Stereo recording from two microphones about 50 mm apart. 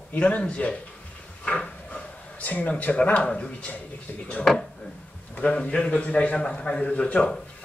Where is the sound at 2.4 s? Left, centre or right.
Left.